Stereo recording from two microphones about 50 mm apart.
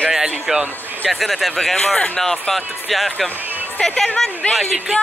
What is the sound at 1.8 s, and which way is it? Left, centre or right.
Speech, centre.